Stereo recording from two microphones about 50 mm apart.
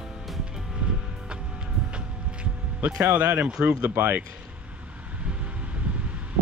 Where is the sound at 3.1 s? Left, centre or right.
Right.